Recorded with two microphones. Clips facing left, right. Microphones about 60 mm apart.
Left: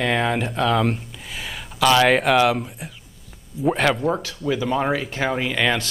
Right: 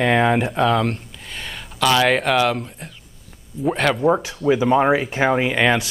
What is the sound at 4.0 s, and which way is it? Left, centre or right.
Speech, right.